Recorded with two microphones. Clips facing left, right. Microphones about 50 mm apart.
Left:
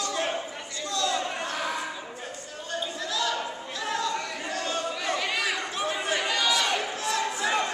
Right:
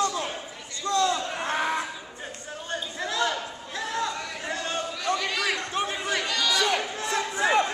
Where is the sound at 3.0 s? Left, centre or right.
Right.